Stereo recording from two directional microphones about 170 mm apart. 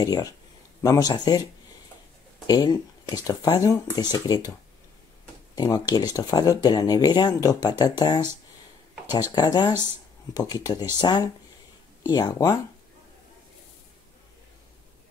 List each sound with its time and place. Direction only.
0.0 s speech: 20° left (ahead or behind)
5.6 s speech: 20° left (ahead or behind)
9.3 s speech: 25° left (ahead or behind)